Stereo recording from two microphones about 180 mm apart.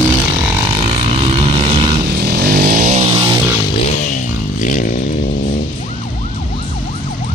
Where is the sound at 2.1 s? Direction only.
60° right (ahead or behind).